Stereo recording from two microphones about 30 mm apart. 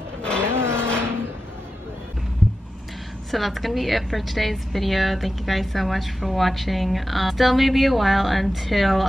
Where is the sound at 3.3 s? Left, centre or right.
Centre.